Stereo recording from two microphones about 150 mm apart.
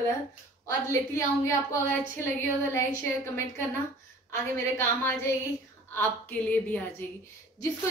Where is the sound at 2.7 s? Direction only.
20° left (ahead or behind).